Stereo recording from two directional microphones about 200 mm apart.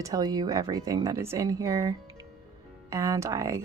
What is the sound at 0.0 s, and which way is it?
Speech, 20° right (ahead or behind).